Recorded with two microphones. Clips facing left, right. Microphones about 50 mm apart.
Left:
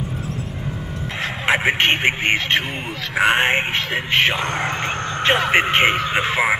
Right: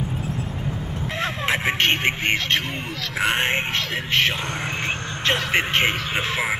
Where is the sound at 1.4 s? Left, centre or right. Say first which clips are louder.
Left 5 dB; left.